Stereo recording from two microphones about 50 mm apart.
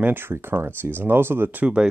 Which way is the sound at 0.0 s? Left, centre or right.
Right.